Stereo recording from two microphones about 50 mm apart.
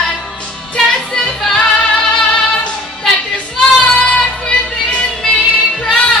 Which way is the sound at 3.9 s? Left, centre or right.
Left.